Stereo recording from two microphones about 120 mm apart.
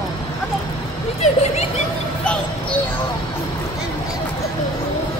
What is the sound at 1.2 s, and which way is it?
Speech, 65° left (ahead or behind).